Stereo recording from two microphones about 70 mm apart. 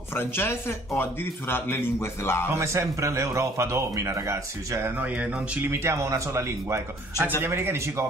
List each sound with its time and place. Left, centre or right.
0.1 s speech: left
2.6 s speech: right
5.0 s speech: centre
5.7 s speech: right
7.4 s a man's voice: right